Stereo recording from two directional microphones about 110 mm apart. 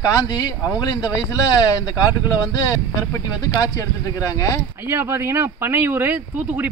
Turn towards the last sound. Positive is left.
turn(degrees=-15)  # may be behind; listen again after turning